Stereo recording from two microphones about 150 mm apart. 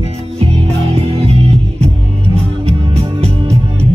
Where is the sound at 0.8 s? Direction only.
45° right (ahead or behind).